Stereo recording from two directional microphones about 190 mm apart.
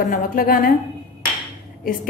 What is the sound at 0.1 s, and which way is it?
Speech, 45° left (ahead or behind).